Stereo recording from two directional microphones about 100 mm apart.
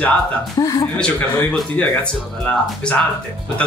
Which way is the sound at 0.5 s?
35° left (ahead or behind).